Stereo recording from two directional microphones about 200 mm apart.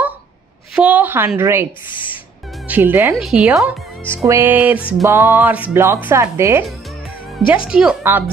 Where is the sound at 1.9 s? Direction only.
25° left (ahead or behind).